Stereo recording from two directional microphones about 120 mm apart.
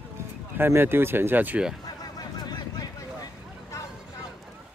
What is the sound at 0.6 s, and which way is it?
Speech, 20° right (ahead or behind).